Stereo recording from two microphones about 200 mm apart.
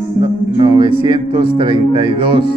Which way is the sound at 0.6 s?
25° right (ahead or behind).